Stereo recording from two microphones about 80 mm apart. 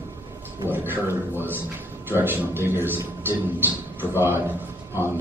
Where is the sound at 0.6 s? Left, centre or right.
Right.